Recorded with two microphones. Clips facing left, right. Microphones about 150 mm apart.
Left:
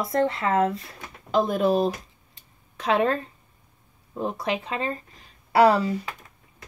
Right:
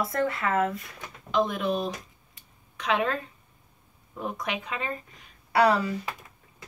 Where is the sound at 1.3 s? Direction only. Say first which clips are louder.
Left 5 dB; 40° left (ahead or behind).